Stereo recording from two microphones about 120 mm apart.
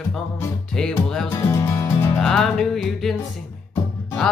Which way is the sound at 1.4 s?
25° left (ahead or behind).